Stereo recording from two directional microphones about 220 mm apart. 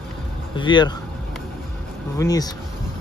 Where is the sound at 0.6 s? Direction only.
20° left (ahead or behind).